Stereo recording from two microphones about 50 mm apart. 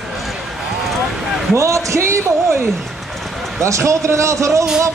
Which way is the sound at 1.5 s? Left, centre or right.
Right.